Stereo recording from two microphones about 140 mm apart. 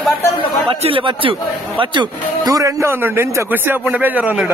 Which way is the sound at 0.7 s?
40° right (ahead or behind).